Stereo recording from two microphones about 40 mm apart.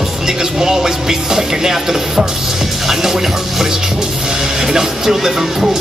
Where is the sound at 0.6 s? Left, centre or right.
Centre.